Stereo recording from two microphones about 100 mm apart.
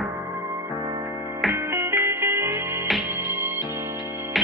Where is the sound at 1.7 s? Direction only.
20° right (ahead or behind).